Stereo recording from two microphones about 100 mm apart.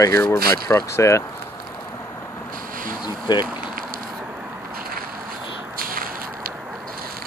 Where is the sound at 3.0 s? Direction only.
50° left (ahead or behind).